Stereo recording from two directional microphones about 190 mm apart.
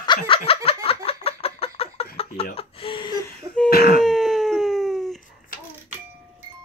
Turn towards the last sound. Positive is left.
turn(degrees=0)  # may be behind; listen again after turning